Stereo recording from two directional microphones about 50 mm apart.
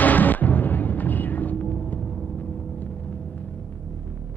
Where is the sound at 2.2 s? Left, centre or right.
Left.